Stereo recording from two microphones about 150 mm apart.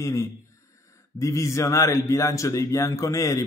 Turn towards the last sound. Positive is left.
turn(degrees=20)  # may be behind; listen again after turning